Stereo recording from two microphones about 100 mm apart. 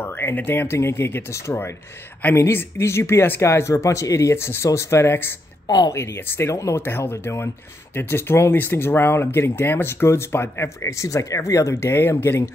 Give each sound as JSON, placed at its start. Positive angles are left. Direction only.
{"t": 0.0, "sound": "speech", "side_deg": 25}
{"t": 5.7, "sound": "speech", "side_deg": 40}
{"t": 5.9, "sound": "speech", "side_deg": 25}